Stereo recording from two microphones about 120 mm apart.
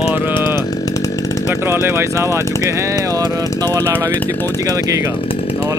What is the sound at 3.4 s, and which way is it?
Speech, 20° left (ahead or behind).